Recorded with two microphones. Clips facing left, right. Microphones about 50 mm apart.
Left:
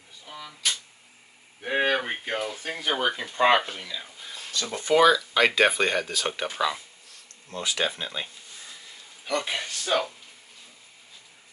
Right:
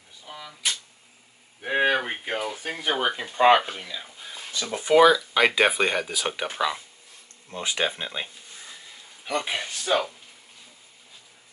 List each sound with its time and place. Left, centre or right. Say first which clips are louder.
0.3 s a sound: even; centre
3.0 s speech: right 2 dB; centre
7.4 s speech: right 1 dB; right